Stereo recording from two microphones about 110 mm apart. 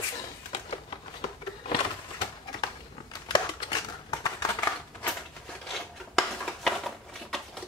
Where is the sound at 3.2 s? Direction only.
40° left (ahead or behind).